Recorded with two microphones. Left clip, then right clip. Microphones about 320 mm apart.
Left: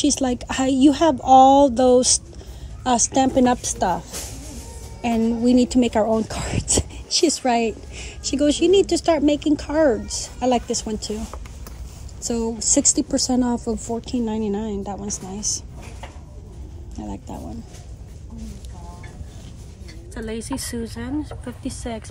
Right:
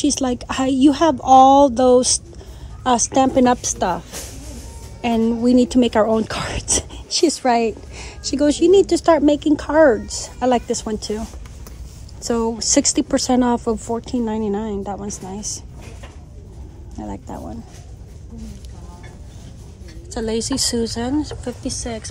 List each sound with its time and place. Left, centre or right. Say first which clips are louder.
0.0 s a woman's voice: right 1 dB; centre
12.5 s speech: left 1 dB; right
13.3 s a woman's voice: right 5 dB; centre
16.9 s a woman's voice: right 3 dB; centre
20.2 s a woman's voice: right 8 dB; centre